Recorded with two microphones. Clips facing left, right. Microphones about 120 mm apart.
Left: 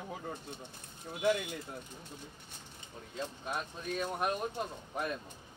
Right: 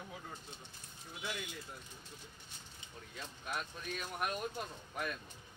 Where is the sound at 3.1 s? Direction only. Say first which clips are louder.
Left 5 dB; 30° left (ahead or behind).